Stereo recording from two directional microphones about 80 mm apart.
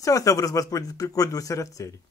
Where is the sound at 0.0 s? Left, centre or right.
Left.